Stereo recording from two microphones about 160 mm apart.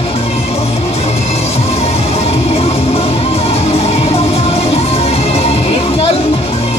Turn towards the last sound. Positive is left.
turn(degrees=40)  # may be behind; listen again after turning